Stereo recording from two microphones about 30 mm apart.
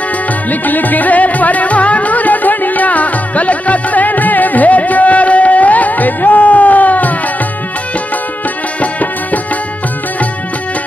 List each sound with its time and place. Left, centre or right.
0.5 s music: left